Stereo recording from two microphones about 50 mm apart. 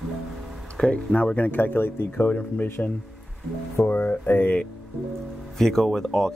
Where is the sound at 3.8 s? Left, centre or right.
Left.